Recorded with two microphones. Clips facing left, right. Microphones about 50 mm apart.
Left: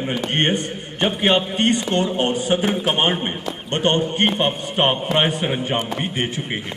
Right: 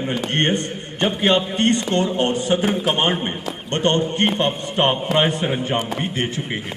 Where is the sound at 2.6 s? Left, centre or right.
Centre.